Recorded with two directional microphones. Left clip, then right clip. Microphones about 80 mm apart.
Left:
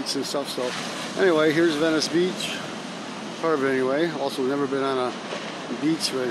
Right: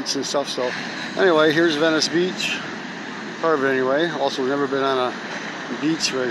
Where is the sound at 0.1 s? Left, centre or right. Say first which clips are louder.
Right 5 dB; centre.